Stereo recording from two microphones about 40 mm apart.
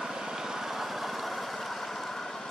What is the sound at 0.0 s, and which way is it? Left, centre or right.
Vehicle, centre.